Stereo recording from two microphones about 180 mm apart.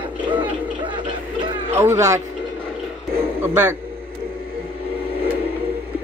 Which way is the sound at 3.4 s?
10° right (ahead or behind).